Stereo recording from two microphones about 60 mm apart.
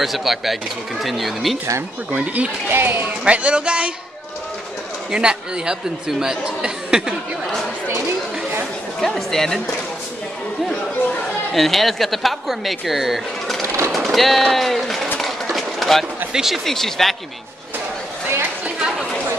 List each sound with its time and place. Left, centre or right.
0.0 s speech: centre
2.1 s speech: right
2.7 s speech: right
3.3 s speech: right
5.1 s speech: centre
9.0 s speech: centre
11.5 s speech: centre
13.7 s a sound: right
13.9 s speech: centre
15.5 s a sound: centre
16.3 s speech: centre
18.8 s chatter: centre